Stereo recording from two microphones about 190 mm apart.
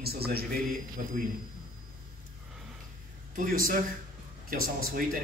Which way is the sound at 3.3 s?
45° right (ahead or behind).